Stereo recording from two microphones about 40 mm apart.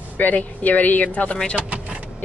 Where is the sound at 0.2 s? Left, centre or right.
Left.